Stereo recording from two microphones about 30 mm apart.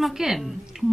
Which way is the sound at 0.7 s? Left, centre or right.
Centre.